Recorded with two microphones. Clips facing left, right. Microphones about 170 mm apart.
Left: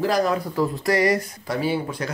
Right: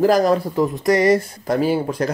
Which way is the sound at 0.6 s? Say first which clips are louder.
Right 1 dB; 20° right (ahead or behind).